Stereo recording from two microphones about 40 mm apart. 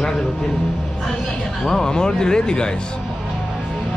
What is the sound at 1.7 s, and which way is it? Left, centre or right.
Speech, centre.